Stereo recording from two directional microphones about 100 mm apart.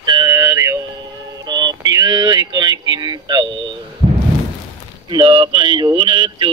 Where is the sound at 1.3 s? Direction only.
40° right (ahead or behind).